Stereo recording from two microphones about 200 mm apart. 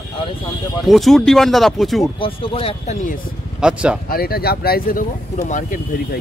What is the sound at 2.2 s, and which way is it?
Speech, 25° left (ahead or behind).